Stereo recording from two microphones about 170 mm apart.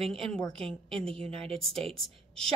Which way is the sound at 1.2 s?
35° right (ahead or behind).